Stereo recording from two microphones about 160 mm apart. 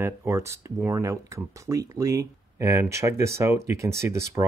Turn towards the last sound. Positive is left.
turn(degrees=-20)  # may be behind; listen again after turning